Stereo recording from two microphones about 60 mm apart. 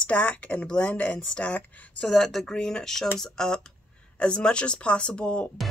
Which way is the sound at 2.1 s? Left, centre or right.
Centre.